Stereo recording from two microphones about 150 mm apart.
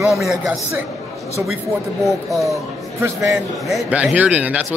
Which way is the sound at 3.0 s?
20° right (ahead or behind).